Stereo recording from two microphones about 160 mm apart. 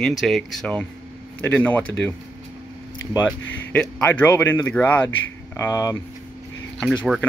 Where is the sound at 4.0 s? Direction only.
15° left (ahead or behind).